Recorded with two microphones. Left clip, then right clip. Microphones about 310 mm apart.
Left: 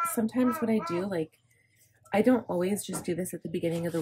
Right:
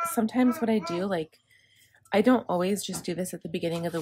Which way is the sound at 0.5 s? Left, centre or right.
Centre.